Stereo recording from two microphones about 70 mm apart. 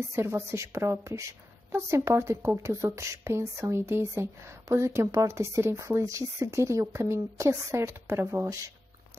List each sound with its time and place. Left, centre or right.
0.1 s speech: right